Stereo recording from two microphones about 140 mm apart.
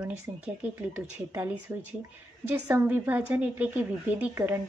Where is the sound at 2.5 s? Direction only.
15° right (ahead or behind).